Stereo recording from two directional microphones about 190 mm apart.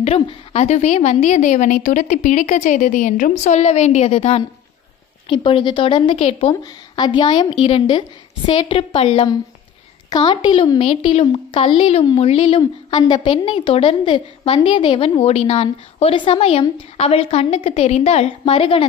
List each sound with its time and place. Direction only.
0.0 s a woman's voice: 35° left (ahead or behind)